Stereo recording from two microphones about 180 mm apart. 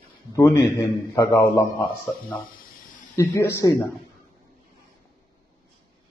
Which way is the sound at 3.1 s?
20° left (ahead or behind).